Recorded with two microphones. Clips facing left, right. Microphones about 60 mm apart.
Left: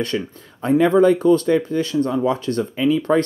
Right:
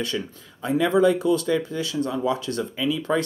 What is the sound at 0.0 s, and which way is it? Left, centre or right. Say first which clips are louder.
Speech: left 5 dB; left.